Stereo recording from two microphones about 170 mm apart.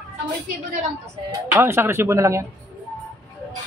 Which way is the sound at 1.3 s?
15° right (ahead or behind).